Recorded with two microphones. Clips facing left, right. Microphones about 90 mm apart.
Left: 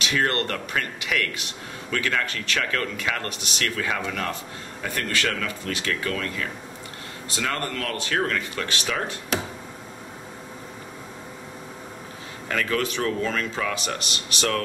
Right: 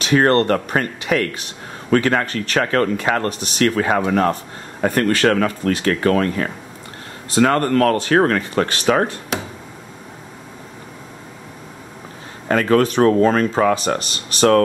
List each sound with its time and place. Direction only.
0.0 s speech: 40° right (ahead or behind)
9.3 s a sound: centre (ahead or behind)
12.4 s speech: 40° right (ahead or behind)